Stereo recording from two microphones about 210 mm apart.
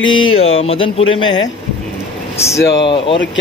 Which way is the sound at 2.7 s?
25° left (ahead or behind).